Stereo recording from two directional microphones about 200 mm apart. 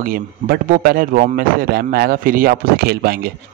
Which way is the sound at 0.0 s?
45° right (ahead or behind).